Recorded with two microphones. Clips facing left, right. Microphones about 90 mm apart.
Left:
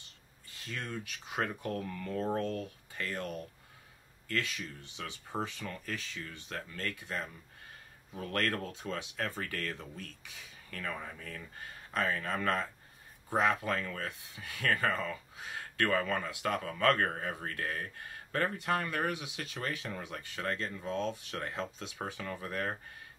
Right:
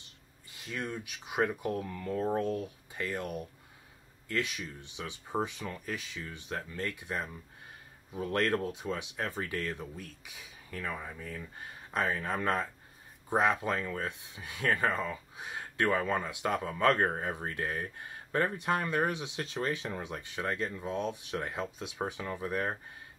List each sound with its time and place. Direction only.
0.5 s speech: 15° right (ahead or behind)